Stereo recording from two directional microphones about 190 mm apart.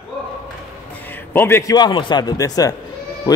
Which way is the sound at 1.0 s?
10° left (ahead or behind).